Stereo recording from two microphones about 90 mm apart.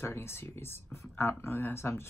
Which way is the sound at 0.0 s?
25° left (ahead or behind).